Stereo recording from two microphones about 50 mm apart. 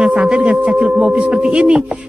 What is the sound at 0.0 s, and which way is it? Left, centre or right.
A man's voice, centre.